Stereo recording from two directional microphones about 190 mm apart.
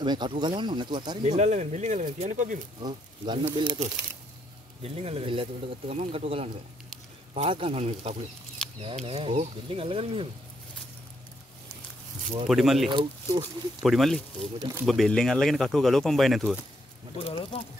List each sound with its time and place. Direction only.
0.0 s speech: 25° right (ahead or behind)
1.2 s speech: 40° right (ahead or behind)
3.5 s speech: 25° right (ahead or behind)
4.8 s speech: 30° right (ahead or behind)
12.4 s speech: centre (ahead or behind)
12.9 s speech: 25° right (ahead or behind)
13.8 s speech: centre (ahead or behind)
14.6 s speech: 15° right (ahead or behind)
14.9 s speech: centre (ahead or behind)
17.3 s speech: 25° left (ahead or behind)